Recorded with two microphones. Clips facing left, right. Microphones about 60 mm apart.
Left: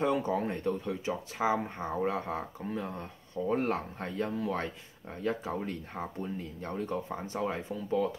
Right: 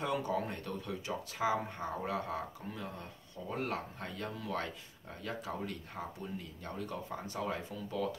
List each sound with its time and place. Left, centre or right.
0.0 s speech: left